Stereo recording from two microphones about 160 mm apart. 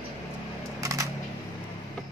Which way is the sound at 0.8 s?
20° right (ahead or behind).